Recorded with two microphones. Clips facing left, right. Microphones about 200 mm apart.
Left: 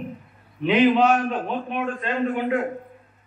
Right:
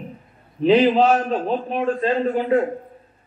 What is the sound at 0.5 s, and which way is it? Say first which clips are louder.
A man's voice: right 3 dB; 35° right (ahead or behind).